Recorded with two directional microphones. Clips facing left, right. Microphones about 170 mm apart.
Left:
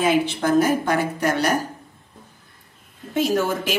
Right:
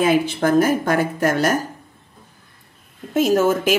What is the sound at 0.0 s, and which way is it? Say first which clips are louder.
A woman's voice: right 2 dB; 45° right (ahead or behind).